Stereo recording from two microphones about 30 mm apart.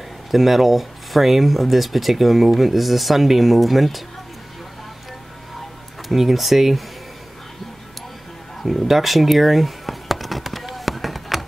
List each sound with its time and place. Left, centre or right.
0.3 s speech: centre
6.0 s speech: centre
8.6 s a sound: centre